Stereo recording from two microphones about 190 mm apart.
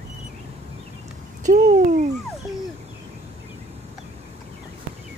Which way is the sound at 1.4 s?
40° right (ahead or behind).